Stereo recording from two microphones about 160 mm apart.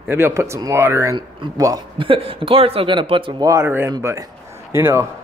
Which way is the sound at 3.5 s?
15° right (ahead or behind).